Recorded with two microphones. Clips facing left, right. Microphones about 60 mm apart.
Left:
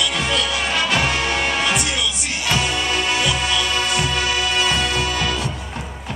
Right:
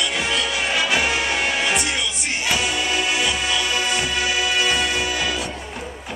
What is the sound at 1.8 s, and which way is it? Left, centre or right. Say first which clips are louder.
Music: left 1 dB; right.